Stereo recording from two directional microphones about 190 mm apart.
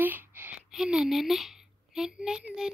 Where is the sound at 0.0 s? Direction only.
10° right (ahead or behind).